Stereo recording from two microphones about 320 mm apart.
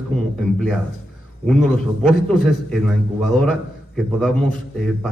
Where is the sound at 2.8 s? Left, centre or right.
Centre.